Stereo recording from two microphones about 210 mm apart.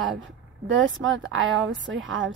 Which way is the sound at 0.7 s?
65° right (ahead or behind).